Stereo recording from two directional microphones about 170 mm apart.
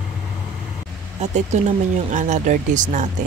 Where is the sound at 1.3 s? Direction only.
45° right (ahead or behind).